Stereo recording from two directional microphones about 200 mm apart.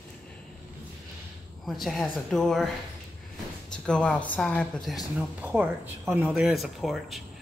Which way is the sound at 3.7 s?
5° left (ahead or behind).